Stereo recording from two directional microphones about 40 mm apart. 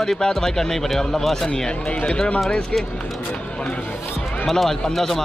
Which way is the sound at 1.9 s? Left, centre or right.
Left.